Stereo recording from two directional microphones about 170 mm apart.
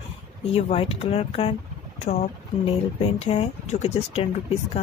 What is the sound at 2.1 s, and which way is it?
Speech, 45° left (ahead or behind).